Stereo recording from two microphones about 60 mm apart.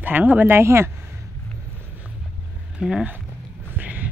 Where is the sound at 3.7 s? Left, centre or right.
Right.